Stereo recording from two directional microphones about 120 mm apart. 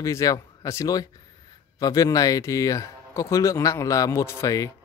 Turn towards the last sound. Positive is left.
turn(degrees=30)  # may be behind; listen again after turning